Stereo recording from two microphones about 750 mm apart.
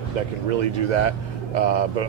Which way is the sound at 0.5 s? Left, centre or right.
Right.